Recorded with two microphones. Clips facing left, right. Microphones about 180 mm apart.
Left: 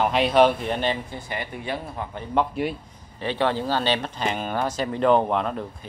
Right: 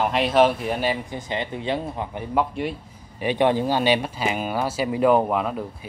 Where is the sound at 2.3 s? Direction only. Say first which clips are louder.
Left 1 dB; centre (ahead or behind).